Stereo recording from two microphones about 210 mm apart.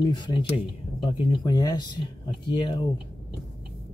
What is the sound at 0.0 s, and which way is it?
Speech, 20° left (ahead or behind).